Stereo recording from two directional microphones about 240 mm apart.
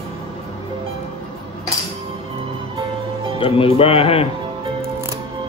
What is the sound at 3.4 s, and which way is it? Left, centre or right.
Speech, left.